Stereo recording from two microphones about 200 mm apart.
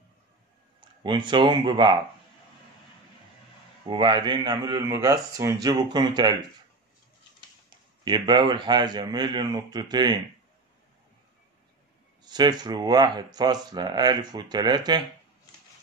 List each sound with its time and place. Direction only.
0.7 s speech: 25° right (ahead or behind)
3.8 s speech: 25° right (ahead or behind)
8.0 s speech: 20° right (ahead or behind)
12.2 s speech: 20° right (ahead or behind)